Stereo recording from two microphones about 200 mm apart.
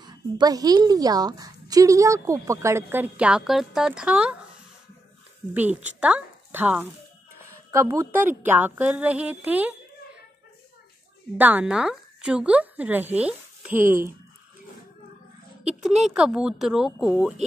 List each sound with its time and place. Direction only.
0.0 s a woman's voice: 20° right (ahead or behind)
5.5 s a woman's voice: 10° right (ahead or behind)
11.3 s speech: 10° right (ahead or behind)
15.6 s speech: 5° right (ahead or behind)